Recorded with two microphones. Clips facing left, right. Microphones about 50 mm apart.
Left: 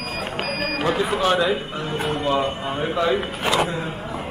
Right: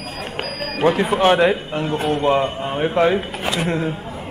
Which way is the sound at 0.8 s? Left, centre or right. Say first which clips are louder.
Right 6 dB; right.